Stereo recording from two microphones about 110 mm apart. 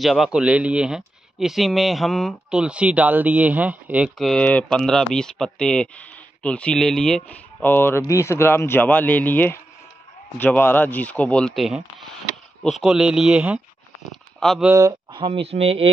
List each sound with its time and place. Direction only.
0.0 s speech: 5° right (ahead or behind)
2.6 s speech: 10° right (ahead or behind)
4.2 s speech: 5° left (ahead or behind); by 13.6 s 10° right (ahead or behind)
14.7 s speech: 30° right (ahead or behind)
15.1 s speech: 55° right (ahead or behind)